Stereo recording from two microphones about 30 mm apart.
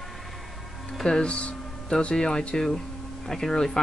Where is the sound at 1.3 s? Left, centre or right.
Left.